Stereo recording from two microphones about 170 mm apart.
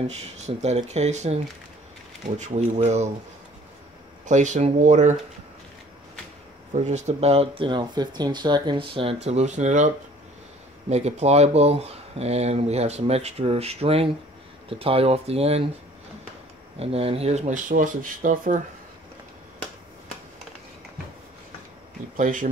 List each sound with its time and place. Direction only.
0.0 s speech: 40° right (ahead or behind)
4.3 s speech: 45° right (ahead or behind)
6.7 s speech: 45° right (ahead or behind)
10.9 s speech: 40° right (ahead or behind)
16.8 s speech: 35° right (ahead or behind); by 18.6 s 50° right (ahead or behind)
22.1 s speech: 50° right (ahead or behind)